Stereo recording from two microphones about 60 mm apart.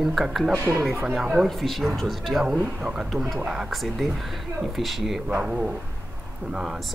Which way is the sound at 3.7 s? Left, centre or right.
Centre.